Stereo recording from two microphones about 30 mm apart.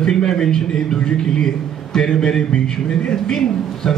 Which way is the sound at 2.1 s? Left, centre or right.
Left.